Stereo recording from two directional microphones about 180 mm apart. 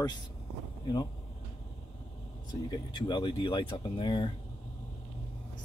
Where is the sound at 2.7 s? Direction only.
25° left (ahead or behind).